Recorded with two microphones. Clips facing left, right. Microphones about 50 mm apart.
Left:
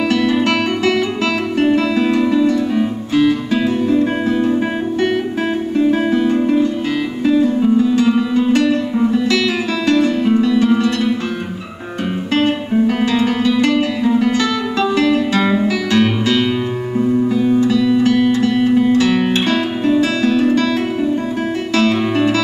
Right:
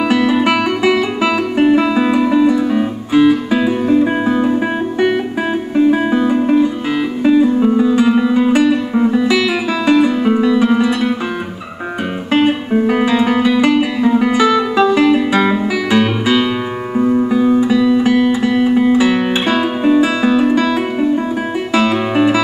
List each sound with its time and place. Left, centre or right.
0.1 s music: centre
12.3 s music: centre
16.9 s music: right
17.3 s music: centre